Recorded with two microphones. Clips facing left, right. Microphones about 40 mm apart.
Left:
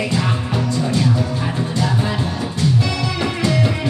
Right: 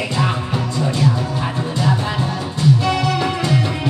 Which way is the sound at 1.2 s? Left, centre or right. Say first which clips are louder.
Left 1 dB; centre.